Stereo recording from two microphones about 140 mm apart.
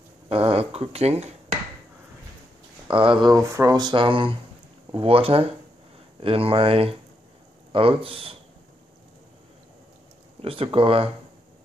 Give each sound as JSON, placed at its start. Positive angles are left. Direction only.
{"t": 0.3, "sound": "speech", "side_deg": -45}
{"t": 2.9, "sound": "speech", "side_deg": -40}
{"t": 10.4, "sound": "speech", "side_deg": -40}